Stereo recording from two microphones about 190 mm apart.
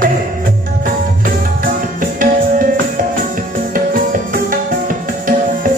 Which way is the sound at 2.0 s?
45° right (ahead or behind).